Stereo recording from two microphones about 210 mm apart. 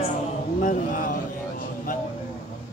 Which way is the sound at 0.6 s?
40° left (ahead or behind).